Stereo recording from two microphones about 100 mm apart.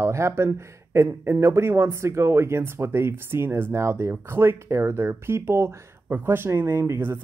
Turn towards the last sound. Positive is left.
turn(degrees=-25)  # may be behind; listen again after turning